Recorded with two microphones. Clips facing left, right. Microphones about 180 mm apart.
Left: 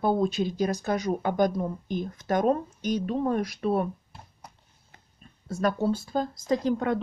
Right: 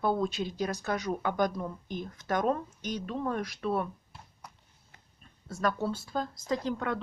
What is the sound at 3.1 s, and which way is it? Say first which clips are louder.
Speech: left 6 dB; 30° left (ahead or behind).